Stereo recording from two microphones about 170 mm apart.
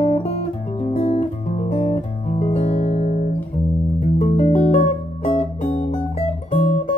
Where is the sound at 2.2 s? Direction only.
45° left (ahead or behind).